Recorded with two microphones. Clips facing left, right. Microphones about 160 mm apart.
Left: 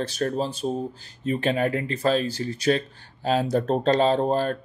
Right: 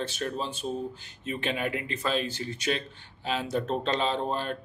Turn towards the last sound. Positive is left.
turn(degrees=40)  # may be behind; listen again after turning